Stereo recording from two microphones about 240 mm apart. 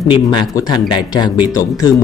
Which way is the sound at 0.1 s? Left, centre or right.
Centre.